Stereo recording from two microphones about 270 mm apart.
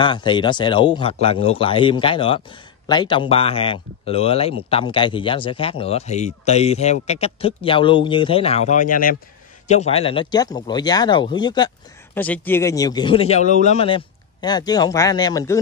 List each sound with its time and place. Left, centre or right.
0.0 s speech: centre